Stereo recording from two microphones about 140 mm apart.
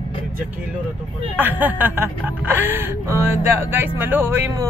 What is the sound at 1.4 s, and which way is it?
Speech, 15° right (ahead or behind).